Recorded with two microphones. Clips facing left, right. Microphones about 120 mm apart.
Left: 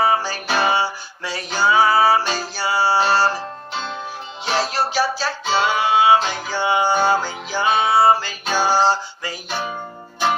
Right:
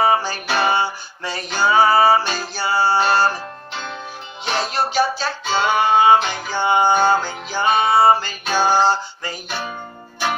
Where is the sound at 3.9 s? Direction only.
5° left (ahead or behind).